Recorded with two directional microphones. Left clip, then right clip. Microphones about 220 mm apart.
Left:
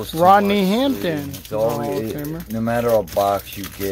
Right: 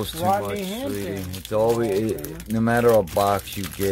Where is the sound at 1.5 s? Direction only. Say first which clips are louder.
Even; 40° right (ahead or behind).